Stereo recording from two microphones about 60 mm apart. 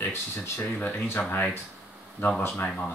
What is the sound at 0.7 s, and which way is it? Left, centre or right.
Speech, left.